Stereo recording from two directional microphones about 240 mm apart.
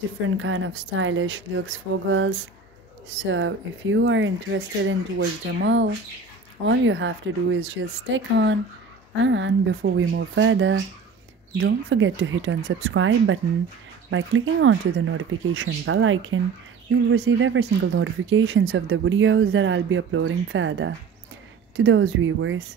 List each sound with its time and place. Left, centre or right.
0.4 s speech: right